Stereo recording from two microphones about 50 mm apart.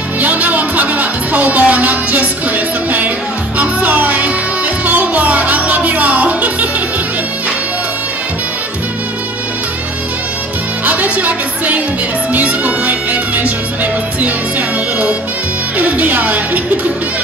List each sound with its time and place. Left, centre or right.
0.2 s music: right
10.9 s music: right
15.8 s a woman's voice: right